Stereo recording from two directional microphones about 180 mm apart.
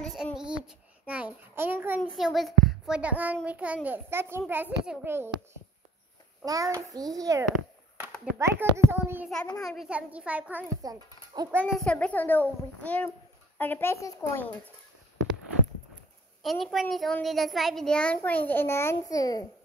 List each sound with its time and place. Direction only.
0.0 s child singing: 5° right (ahead or behind)
2.0 s a child's voice: centre (ahead or behind)
6.4 s a child's voice: 20° right (ahead or behind)
10.8 s a child's voice: 20° right (ahead or behind)
11.7 s a child's voice: 5° left (ahead or behind)
16.4 s a child's voice: centre (ahead or behind); by 19.4 s 20° left (ahead or behind)